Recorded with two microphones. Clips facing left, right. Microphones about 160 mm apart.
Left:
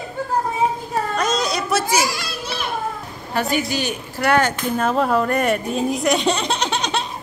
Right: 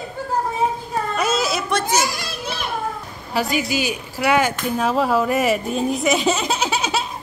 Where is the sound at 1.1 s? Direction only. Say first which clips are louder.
Right 1 dB; 5° right (ahead or behind).